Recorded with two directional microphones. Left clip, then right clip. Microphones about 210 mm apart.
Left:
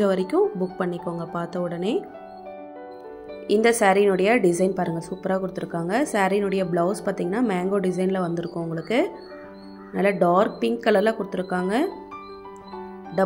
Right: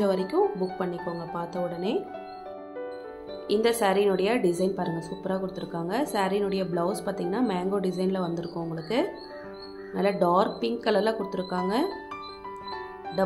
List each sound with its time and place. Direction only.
0.0 s a woman's voice: 20° left (ahead or behind)
3.4 s a woman's voice: 25° left (ahead or behind)